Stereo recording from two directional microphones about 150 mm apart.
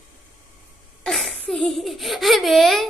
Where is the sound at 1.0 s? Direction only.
Centre (ahead or behind).